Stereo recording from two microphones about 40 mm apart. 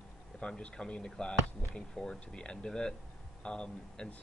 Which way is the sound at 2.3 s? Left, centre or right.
Left.